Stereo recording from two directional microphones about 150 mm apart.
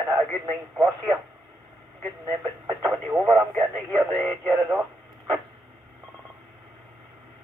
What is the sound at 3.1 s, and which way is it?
Speech, 10° right (ahead or behind).